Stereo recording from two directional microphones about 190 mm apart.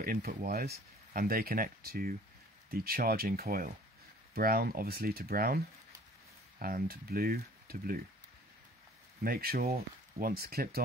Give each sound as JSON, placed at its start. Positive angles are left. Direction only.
{"t": 0.0, "sound": "speech", "side_deg": -50}
{"t": 6.6, "sound": "speech", "side_deg": -50}
{"t": 9.2, "sound": "speech", "side_deg": -50}